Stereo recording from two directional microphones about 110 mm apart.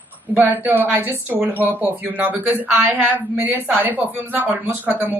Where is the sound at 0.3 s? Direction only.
15° right (ahead or behind).